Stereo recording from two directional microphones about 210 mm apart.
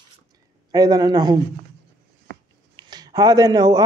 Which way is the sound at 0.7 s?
20° right (ahead or behind).